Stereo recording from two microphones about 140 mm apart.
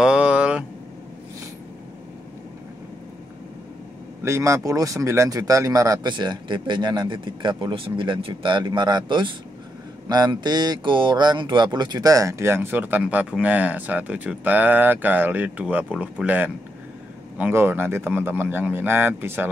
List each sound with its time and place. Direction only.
0.0 s vehicle: 5° right (ahead or behind)
4.2 s speech: 20° right (ahead or behind)